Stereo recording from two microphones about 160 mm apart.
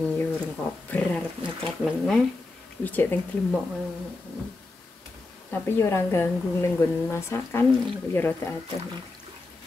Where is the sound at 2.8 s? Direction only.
10° left (ahead or behind).